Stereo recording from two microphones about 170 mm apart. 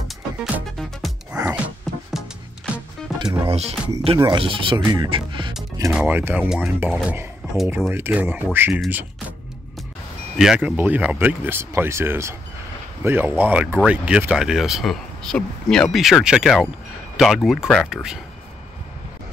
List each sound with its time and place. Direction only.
0.1 s music: centre (ahead or behind)
3.1 s music: centre (ahead or behind)
3.4 s speech: 40° right (ahead or behind)
4.2 s speech: 30° right (ahead or behind)
5.9 s speech: 10° right (ahead or behind)
10.3 s speech: centre (ahead or behind)